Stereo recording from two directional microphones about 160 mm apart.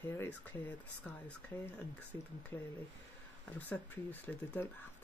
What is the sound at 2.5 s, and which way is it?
Speech, 15° left (ahead or behind).